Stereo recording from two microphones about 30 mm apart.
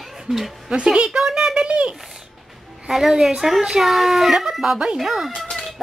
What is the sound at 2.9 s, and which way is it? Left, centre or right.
A woman's voice, centre.